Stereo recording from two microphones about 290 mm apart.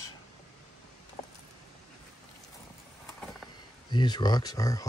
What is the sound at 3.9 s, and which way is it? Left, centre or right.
Speech, centre.